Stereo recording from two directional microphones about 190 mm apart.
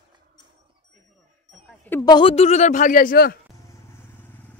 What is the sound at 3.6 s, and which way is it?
Vehicle, 15° left (ahead or behind).